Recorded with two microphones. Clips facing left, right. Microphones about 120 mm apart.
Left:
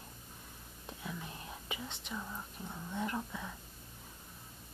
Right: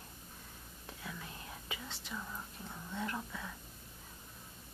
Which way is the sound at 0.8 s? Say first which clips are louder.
Left 3 dB; 20° left (ahead or behind).